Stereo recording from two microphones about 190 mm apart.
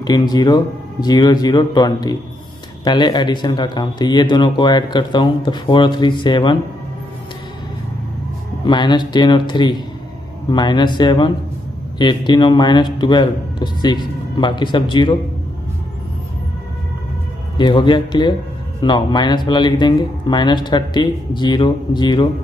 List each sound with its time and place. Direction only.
0.0 s speech: 20° left (ahead or behind)
8.6 s speech: 25° left (ahead or behind)
17.6 s speech: 25° left (ahead or behind)